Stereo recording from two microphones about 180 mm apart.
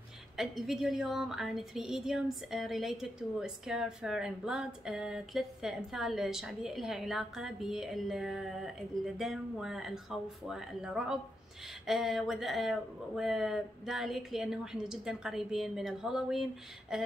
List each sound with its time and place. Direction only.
0.4 s a woman's voice: centre (ahead or behind)